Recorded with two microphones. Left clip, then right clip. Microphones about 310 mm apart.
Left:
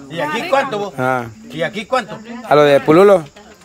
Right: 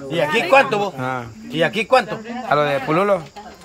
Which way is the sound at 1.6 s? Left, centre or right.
Right.